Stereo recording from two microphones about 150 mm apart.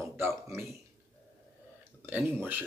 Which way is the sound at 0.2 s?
15° right (ahead or behind).